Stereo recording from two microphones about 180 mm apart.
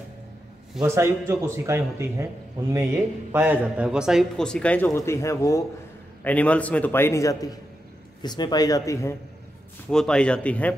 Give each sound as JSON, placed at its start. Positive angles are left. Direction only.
{"t": 0.8, "sound": "a man's voice", "side_deg": -15}
{"t": 9.8, "sound": "a man's voice", "side_deg": 5}